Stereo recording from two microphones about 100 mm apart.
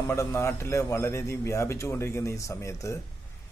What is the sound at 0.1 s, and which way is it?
A man's voice, 25° left (ahead or behind).